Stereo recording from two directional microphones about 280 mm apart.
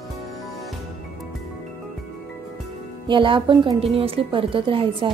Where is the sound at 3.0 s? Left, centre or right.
Centre.